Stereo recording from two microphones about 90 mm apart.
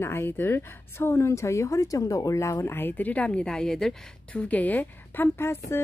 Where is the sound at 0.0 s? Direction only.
25° left (ahead or behind).